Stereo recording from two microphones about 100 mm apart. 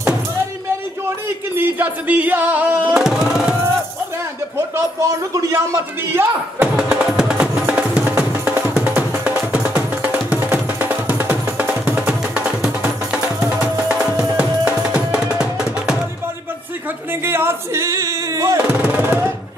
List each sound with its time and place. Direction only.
1.6 s music: 15° right (ahead or behind)
2.9 s music: 5° right (ahead or behind)
4.6 s a man's voice: 30° right (ahead or behind)
6.1 s music: 15° right (ahead or behind)
17.1 s a sound: 20° right (ahead or behind)
18.9 s percussion: 20° right (ahead or behind)